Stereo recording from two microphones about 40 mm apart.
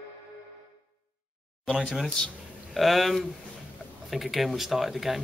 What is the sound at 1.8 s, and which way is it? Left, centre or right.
Speech, centre.